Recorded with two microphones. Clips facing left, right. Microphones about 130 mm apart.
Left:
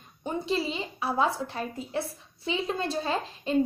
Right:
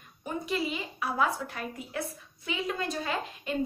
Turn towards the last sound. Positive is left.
turn(degrees=30)  # may be behind; listen again after turning